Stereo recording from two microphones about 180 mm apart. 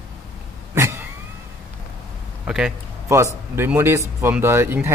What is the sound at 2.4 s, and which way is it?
Speech, 5° right (ahead or behind).